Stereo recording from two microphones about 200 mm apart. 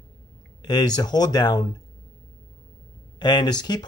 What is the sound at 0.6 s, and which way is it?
Speech, 20° left (ahead or behind).